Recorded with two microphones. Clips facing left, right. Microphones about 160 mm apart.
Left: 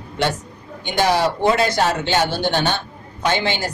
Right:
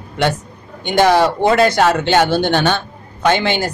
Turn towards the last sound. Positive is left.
turn(degrees=-60)  # may be behind; listen again after turning